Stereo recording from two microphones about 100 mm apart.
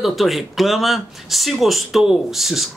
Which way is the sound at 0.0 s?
Centre (ahead or behind).